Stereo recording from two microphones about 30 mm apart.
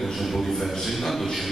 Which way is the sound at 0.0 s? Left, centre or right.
Centre.